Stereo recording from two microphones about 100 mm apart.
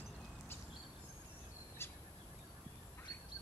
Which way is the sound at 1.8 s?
25° left (ahead or behind).